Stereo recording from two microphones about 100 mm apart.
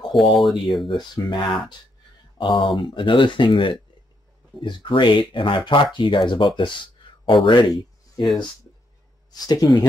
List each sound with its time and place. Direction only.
0.0 s speech: centre (ahead or behind)
0.9 s speech: 45° left (ahead or behind)
7.6 s speech: centre (ahead or behind)
9.3 s speech: 40° left (ahead or behind)